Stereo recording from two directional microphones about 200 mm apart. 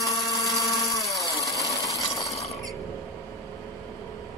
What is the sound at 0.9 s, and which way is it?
Chainsaw, 15° left (ahead or behind).